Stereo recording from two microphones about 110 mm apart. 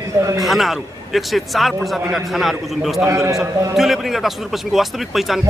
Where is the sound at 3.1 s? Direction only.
30° right (ahead or behind).